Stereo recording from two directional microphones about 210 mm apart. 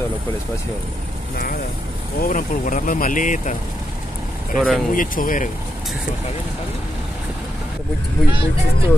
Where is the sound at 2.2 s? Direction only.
40° left (ahead or behind).